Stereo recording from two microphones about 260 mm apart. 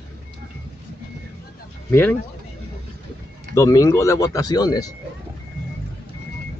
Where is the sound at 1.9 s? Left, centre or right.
Centre.